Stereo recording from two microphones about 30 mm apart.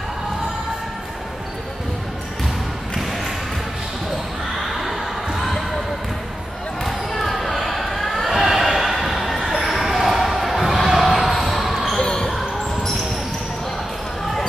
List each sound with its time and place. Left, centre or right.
4.7 s a sound: centre
6.8 s basketball bounce: centre
8.3 s a sound: centre
9.7 s basketball bounce: centre
12.0 s basketball bounce: left
12.3 s basketball bounce: centre